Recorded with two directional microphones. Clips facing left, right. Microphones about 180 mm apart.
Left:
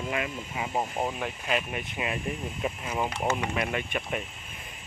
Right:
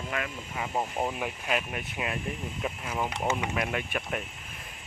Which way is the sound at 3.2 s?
5° right (ahead or behind).